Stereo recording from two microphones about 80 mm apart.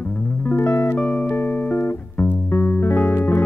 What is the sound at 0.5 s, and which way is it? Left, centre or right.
Music, left.